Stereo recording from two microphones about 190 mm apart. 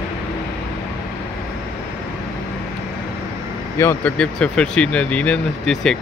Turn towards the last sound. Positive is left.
turn(degrees=0)  # may be behind; listen again after turning